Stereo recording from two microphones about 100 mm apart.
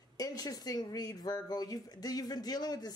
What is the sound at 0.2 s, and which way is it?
Speech, 40° left (ahead or behind).